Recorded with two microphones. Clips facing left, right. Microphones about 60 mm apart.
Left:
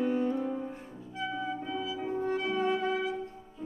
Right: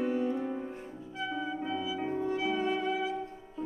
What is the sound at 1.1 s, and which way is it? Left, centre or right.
Music, centre.